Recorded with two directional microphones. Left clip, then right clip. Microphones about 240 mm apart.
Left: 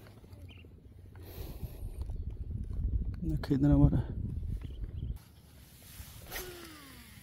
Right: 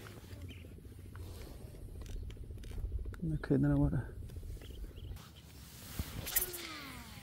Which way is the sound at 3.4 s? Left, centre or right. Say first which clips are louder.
Left 4 dB; left.